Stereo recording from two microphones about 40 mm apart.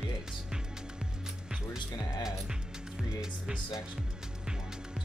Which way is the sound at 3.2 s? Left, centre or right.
Centre.